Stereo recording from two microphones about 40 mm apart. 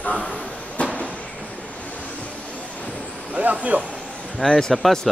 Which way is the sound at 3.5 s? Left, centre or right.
Right.